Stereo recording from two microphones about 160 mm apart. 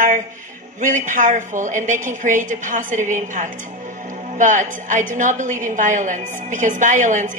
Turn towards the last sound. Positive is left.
turn(degrees=-50)  # may be behind; listen again after turning